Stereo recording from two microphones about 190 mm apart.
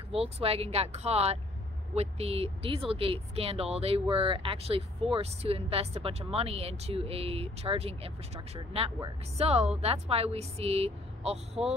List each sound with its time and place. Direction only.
0.1 s speech: 30° right (ahead or behind)